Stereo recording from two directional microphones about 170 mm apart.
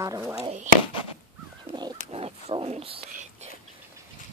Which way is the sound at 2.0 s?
35° right (ahead or behind).